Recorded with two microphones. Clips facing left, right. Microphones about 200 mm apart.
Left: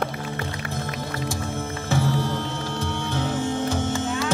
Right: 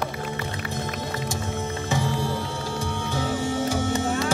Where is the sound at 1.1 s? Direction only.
20° right (ahead or behind).